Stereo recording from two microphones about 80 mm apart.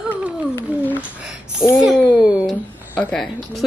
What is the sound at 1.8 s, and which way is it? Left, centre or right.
Speech, centre.